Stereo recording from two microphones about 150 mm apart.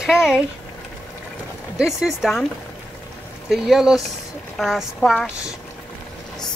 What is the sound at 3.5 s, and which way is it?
A woman's voice, centre (ahead or behind).